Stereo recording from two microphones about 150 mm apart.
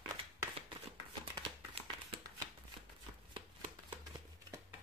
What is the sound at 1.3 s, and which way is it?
Crumpling, 35° right (ahead or behind).